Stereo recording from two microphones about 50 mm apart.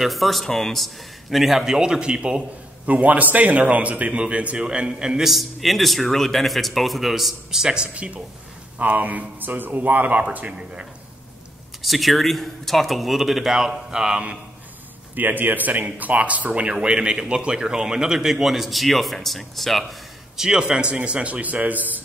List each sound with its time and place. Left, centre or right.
0.0 s a man's voice: centre
2.9 s a man's voice: right; by 5.3 s centre
5.3 s a man's voice: centre
7.6 s a man's voice: centre
11.8 s a man's voice: centre
15.1 s speech: right
16.7 s a man's voice: centre